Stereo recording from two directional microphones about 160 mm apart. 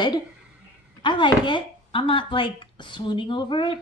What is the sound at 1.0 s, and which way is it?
Speech, 30° left (ahead or behind).